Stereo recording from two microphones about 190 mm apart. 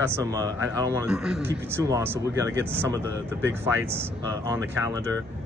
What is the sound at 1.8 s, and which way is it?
Speech, 15° right (ahead or behind).